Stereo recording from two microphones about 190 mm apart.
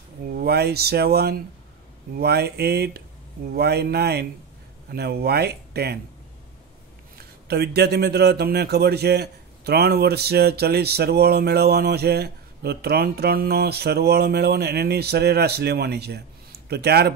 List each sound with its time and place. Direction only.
0.3 s a man's voice: 55° right (ahead or behind)
7.4 s a man's voice: 55° right (ahead or behind)